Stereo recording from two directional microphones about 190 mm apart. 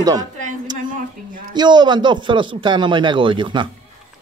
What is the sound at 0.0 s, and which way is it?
Speech, 20° right (ahead or behind).